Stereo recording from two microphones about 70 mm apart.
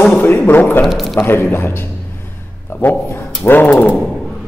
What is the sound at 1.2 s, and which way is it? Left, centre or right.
Speech, left.